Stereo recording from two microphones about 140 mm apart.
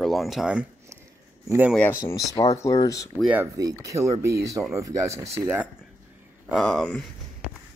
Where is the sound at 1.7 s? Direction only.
15° left (ahead or behind).